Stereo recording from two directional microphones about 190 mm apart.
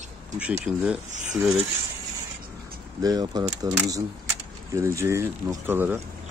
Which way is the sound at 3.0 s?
20° right (ahead or behind).